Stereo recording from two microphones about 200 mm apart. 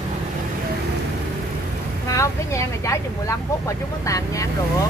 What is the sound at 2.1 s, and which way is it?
Speech, 15° left (ahead or behind).